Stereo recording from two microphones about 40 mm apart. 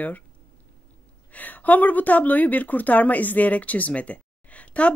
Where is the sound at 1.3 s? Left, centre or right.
Left.